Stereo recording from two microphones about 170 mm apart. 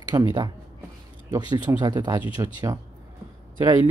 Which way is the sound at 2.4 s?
20° right (ahead or behind).